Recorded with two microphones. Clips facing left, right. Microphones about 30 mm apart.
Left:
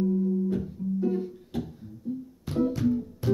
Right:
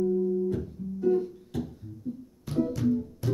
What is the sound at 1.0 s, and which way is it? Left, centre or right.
Music, centre.